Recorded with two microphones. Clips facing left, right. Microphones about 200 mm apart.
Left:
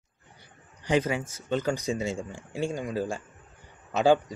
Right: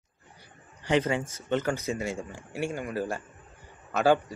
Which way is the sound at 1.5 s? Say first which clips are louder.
Left 1 dB; 15° left (ahead or behind).